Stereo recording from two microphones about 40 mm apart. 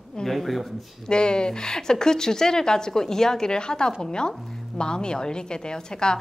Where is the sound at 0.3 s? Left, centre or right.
Centre.